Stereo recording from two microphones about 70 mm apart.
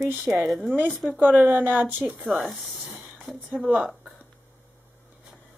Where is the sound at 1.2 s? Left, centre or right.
Right.